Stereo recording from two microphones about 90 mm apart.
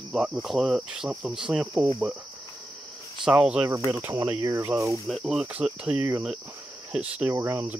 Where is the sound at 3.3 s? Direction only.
10° right (ahead or behind).